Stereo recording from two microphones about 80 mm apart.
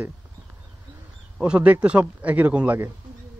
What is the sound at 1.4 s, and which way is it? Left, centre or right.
Speech, centre.